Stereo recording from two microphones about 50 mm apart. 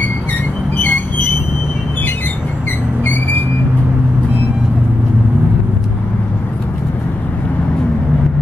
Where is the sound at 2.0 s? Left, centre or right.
Left.